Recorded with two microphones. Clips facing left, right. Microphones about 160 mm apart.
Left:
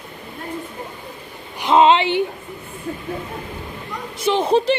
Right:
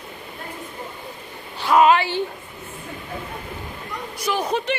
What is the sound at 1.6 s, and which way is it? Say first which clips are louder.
Speech: left 2 dB; 25° left (ahead or behind).